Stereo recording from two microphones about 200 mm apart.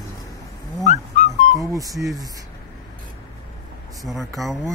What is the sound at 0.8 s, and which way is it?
Dog, 35° left (ahead or behind).